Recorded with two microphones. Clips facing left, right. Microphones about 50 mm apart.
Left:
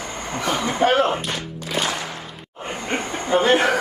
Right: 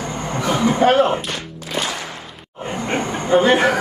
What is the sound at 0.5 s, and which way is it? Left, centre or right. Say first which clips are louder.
Speech: right 4 dB; centre.